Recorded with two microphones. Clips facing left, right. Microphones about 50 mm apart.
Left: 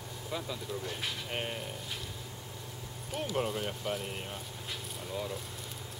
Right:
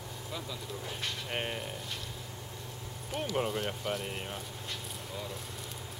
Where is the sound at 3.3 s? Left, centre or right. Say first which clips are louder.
Right 1 dB; centre.